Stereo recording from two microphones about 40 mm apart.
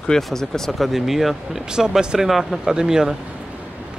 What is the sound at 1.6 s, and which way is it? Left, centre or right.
Speech, centre.